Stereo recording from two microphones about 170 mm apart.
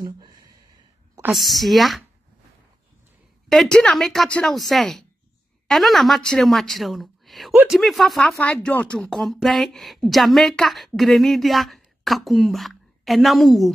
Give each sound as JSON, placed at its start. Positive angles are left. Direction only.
{"t": 0.0, "sound": "a sound", "side_deg": -25}
{"t": 1.3, "sound": "speech", "side_deg": 0}
{"t": 3.4, "sound": "speech", "side_deg": 5}